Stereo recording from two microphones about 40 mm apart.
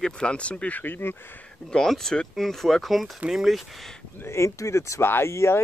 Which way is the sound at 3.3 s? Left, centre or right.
Centre.